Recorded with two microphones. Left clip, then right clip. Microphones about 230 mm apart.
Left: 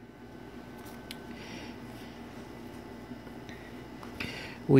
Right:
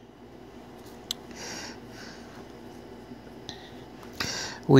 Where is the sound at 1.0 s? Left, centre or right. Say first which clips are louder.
Right 10 dB; centre.